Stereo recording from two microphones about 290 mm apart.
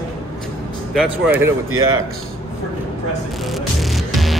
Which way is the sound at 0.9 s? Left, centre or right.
Centre.